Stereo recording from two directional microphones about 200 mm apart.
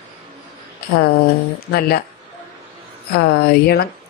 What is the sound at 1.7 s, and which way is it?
Speech, 50° left (ahead or behind).